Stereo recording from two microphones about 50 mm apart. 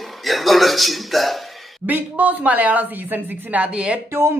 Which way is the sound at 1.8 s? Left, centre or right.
Right.